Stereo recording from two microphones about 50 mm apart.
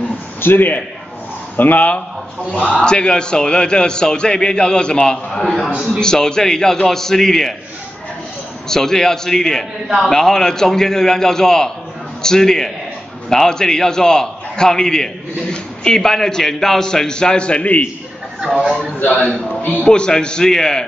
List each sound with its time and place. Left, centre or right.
0.4 s a man's voice: left
2.7 s a man's voice: centre
8.6 s a man's voice: centre; by 17.8 s left
18.9 s a man's voice: left
19.8 s a man's voice: centre